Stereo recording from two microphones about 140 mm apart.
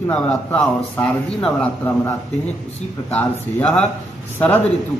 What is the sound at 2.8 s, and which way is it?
Speech, 55° left (ahead or behind).